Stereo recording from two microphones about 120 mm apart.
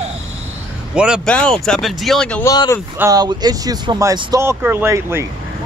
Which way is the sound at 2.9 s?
30° right (ahead or behind).